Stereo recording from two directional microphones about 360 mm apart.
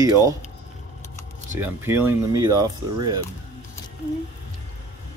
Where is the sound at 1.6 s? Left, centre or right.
Centre.